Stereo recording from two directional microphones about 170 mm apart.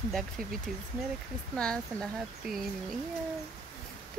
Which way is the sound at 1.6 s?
5° left (ahead or behind).